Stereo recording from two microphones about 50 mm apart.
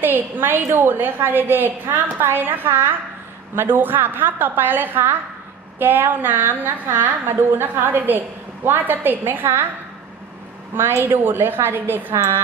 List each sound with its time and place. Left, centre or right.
0.0 s a woman's voice: right
11.1 s a woman's voice: right